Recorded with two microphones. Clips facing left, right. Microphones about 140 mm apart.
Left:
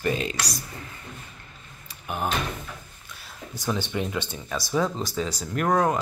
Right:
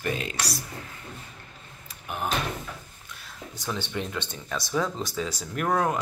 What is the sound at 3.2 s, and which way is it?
Speech, 10° left (ahead or behind).